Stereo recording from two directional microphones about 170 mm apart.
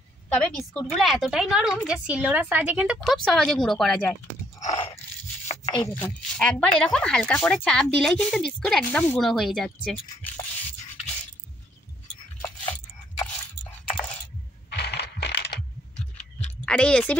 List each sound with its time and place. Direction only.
0.3 s a woman's voice: 5° left (ahead or behind)
4.6 s biting: 40° left (ahead or behind)
5.9 s a woman's voice: 10° left (ahead or behind)
12.4 s a sound: 20° left (ahead or behind)
14.7 s a sound: 75° left (ahead or behind)
16.6 s speech: 5° left (ahead or behind)